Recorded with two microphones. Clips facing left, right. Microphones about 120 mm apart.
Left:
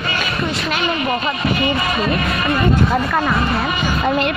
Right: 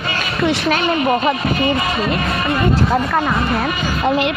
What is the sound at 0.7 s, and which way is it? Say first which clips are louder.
Speech: right 4 dB; 45° right (ahead or behind).